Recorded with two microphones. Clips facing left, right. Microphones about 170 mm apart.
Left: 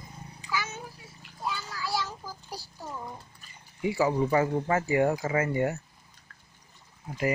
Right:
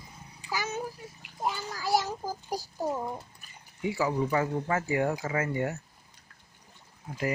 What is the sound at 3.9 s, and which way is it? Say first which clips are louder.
Speech: left 3 dB; 20° left (ahead or behind).